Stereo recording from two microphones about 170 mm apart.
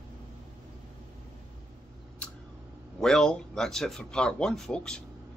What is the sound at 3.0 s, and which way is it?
Speech, 5° left (ahead or behind).